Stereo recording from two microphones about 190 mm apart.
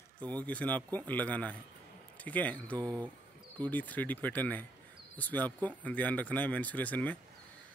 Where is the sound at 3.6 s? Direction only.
10° left (ahead or behind).